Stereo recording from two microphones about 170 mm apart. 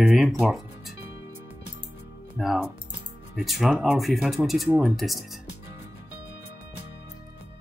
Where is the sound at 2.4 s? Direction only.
5° right (ahead or behind).